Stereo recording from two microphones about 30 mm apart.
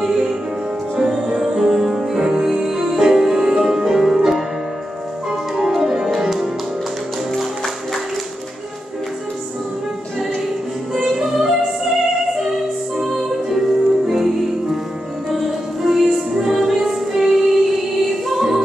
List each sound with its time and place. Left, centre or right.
0.0 s music: centre
11.0 s music: centre
13.1 s music: centre